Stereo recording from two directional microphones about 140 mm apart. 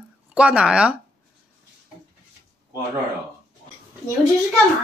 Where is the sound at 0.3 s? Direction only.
10° right (ahead or behind).